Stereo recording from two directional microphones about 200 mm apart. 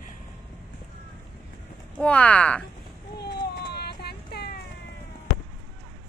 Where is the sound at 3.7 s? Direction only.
55° left (ahead or behind).